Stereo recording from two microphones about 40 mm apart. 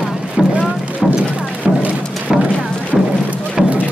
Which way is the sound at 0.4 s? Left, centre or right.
Centre.